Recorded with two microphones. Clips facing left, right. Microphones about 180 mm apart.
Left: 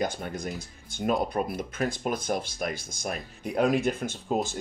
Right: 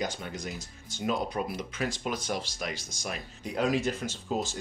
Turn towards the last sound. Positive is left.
turn(degrees=55)  # may be behind; listen again after turning